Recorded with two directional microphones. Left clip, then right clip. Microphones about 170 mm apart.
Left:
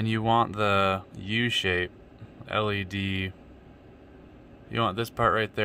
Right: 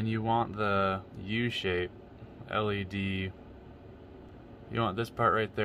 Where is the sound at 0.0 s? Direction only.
35° left (ahead or behind).